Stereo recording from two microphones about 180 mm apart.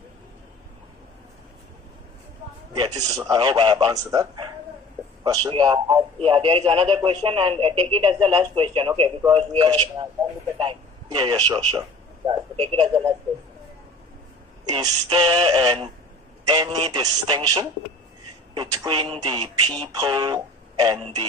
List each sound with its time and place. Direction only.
2.7 s speech: 25° right (ahead or behind)
10.6 s a man's voice: 25° right (ahead or behind)
14.7 s speech: 25° right (ahead or behind)